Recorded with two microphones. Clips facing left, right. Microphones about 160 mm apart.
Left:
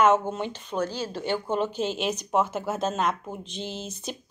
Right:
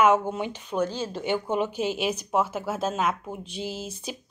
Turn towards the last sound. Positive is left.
turn(degrees=-5)  # may be behind; listen again after turning